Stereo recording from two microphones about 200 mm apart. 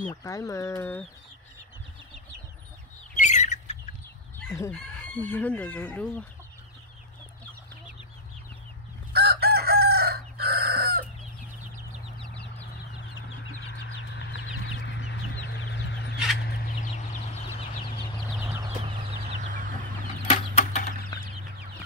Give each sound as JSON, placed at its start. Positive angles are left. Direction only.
{"t": 0.0, "sound": "chicken", "side_deg": 15}
{"t": 3.2, "sound": "bird", "side_deg": 35}
{"t": 4.6, "sound": "chicken", "side_deg": 10}
{"t": 9.1, "sound": "chicken", "side_deg": -50}
{"t": 13.7, "sound": "chicken", "side_deg": 60}
{"t": 16.3, "sound": "fowl", "side_deg": 45}
{"t": 17.6, "sound": "chicken", "side_deg": 25}
{"t": 20.2, "sound": "a sound", "side_deg": 35}